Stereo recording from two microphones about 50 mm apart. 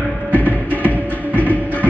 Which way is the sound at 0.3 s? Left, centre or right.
Left.